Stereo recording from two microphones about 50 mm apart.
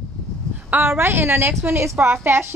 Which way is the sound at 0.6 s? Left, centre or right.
Right.